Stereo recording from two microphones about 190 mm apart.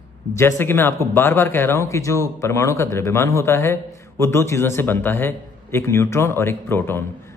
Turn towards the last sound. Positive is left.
turn(degrees=10)  # may be behind; listen again after turning